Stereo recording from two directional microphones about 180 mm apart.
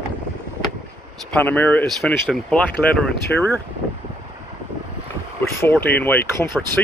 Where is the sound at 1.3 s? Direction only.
10° left (ahead or behind).